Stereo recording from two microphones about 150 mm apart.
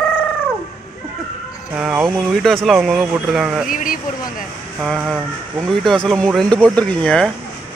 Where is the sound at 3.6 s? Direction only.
65° left (ahead or behind).